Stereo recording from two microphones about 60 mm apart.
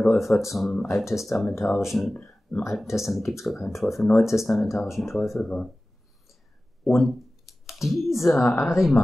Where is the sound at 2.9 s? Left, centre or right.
Centre.